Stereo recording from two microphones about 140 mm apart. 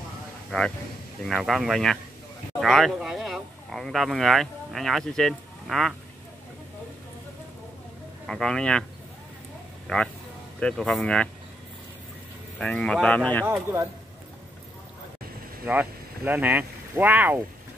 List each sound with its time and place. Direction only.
0.5 s speech: 5° left (ahead or behind)
8.3 s speech: 5° left (ahead or behind)
9.9 s speech: 5° left (ahead or behind)
12.5 s speech: 5° left (ahead or behind)
13.5 s speech: 15° right (ahead or behind)
15.6 s speech: 10° right (ahead or behind)